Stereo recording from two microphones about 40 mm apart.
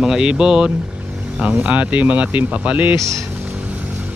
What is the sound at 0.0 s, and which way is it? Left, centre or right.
Speech, centre.